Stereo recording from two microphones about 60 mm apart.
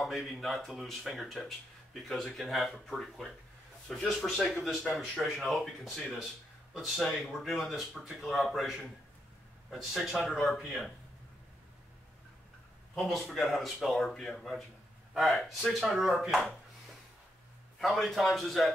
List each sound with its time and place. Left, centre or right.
0.0 s speech: centre
13.0 s speech: centre
17.7 s speech: centre